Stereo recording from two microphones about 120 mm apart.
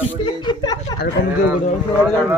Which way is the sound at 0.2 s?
40° left (ahead or behind).